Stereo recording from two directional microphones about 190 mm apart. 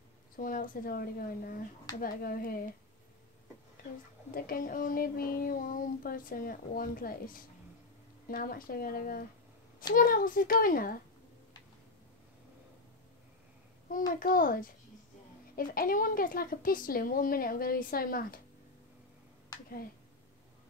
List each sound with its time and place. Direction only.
0.4 s child singing: 45° left (ahead or behind)
4.3 s child singing: 50° left (ahead or behind)
14.2 s child singing: 45° left (ahead or behind)